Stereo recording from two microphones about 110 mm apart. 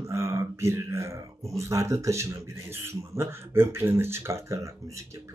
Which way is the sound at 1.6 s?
25° right (ahead or behind).